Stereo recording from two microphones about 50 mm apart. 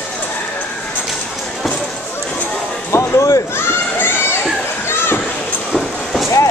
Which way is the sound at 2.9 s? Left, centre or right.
Left.